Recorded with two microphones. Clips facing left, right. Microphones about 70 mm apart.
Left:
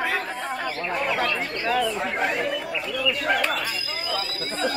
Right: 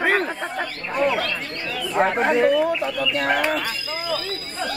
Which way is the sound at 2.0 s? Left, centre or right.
Right.